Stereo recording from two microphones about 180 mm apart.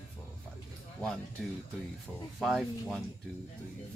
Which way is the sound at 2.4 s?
Centre (ahead or behind).